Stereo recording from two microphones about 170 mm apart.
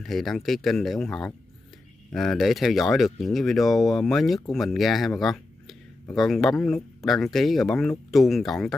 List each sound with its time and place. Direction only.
0.0 s speech: centre (ahead or behind)
5.2 s a sound: centre (ahead or behind)
6.1 s speech: centre (ahead or behind)